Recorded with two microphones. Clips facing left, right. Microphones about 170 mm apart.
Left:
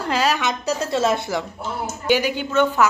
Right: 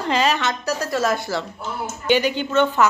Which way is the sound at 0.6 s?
25° left (ahead or behind).